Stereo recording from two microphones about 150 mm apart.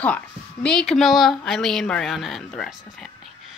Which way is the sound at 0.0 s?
5° left (ahead or behind).